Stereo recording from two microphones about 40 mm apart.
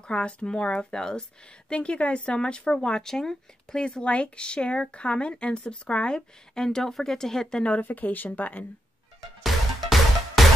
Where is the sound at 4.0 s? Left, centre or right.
Left; by 7.6 s centre.